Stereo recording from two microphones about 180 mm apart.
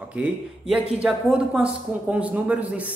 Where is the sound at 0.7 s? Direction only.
5° right (ahead or behind).